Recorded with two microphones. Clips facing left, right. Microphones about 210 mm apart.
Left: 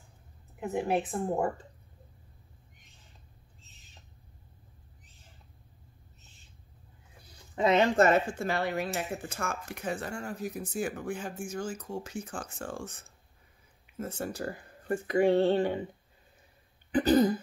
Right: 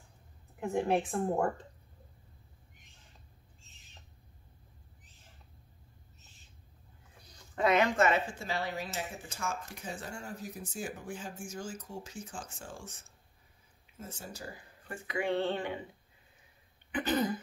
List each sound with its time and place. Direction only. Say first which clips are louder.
0.6 s speech: even; 5° left (ahead or behind)
7.5 s speech: left 3 dB; 25° left (ahead or behind); by 12.9 s 60° left (ahead or behind)
13.9 s speech: left 10 dB; 60° left (ahead or behind); by 15.8 s 35° left (ahead or behind)
16.9 s throat clearing: left 8 dB; 35° left (ahead or behind)